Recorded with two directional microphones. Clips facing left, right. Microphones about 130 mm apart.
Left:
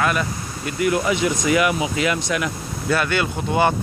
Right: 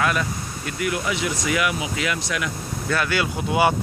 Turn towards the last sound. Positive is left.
turn(degrees=-5)  # may be behind; listen again after turning